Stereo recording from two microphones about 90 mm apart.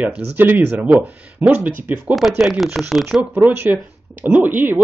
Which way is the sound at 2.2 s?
Centre (ahead or behind).